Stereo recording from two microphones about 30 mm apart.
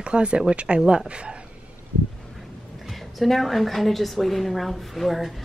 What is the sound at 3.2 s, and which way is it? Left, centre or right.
A woman's voice, centre.